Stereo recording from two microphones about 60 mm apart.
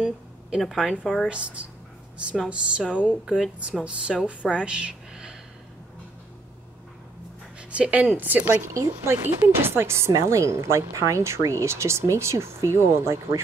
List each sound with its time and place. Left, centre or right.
0.6 s a woman's voice: centre
1.3 s speech: centre
3.3 s a woman's voice: centre
3.8 s speech: centre
7.7 s speech: right
9.0 s speech: right